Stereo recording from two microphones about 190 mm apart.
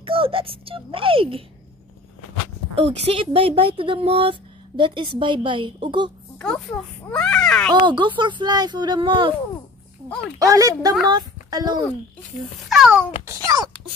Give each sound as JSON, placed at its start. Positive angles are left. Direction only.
{"t": 0.0, "sound": "a child's voice", "side_deg": -30}
{"t": 2.7, "sound": "speech", "side_deg": -30}
{"t": 6.3, "sound": "a sound", "side_deg": 5}
{"t": 7.1, "sound": "baby cry", "side_deg": 5}
{"t": 7.7, "sound": "speech", "side_deg": -25}
{"t": 10.4, "sound": "speech", "side_deg": -20}
{"t": 12.4, "sound": "speech", "side_deg": 0}
{"t": 13.2, "sound": "a child's voice", "side_deg": -20}